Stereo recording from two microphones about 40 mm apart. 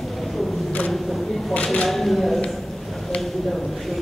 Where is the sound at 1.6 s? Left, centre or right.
Left.